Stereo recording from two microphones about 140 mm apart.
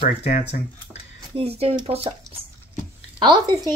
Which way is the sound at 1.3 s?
45° right (ahead or behind).